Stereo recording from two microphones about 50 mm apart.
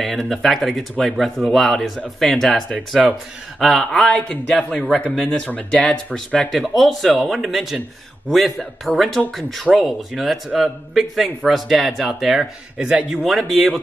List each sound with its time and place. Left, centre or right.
0.0 s a man's voice: centre
3.0 s a man's voice: centre
3.5 s a man's voice: centre
4.1 s speech: centre
6.5 s a man's voice: centre
12.8 s a man's voice: right
13.2 s a man's voice: centre